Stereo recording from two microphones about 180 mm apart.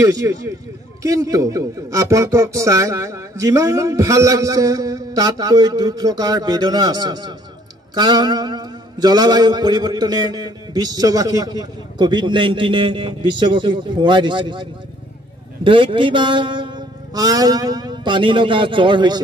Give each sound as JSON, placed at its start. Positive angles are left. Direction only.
{"t": 0.0, "sound": "a man's voice", "side_deg": -20}